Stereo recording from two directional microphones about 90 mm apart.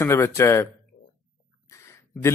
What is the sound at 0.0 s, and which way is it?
Speech, 30° left (ahead or behind).